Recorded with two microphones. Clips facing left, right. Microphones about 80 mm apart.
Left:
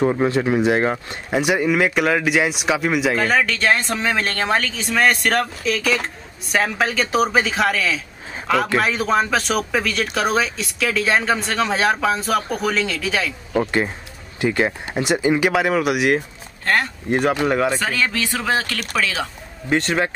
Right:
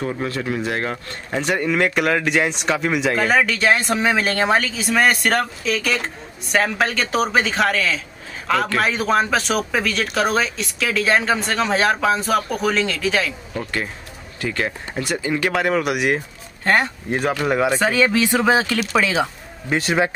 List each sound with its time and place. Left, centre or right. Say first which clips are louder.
0.0 s speech: left 6 dB; left; by 13.3 s centre
13.6 s speech: left 7 dB; left
15.5 s speech: left 1 dB; centre
16.6 s speech: right 2 dB; centre
17.5 s speech: even; centre
17.7 s speech: right 5 dB; centre
19.7 s speech: even; centre